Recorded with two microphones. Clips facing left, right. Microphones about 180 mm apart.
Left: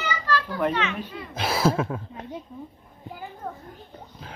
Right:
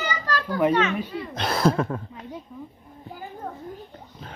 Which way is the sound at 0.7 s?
45° right (ahead or behind).